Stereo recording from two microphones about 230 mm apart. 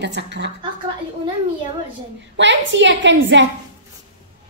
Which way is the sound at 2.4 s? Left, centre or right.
Right.